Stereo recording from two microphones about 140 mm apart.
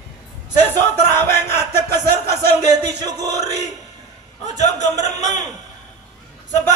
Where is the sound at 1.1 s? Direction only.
20° left (ahead or behind).